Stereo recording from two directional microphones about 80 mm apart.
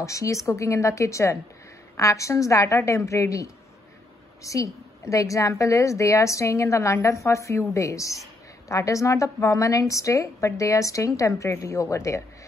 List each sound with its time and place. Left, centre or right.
0.0 s a woman's voice: left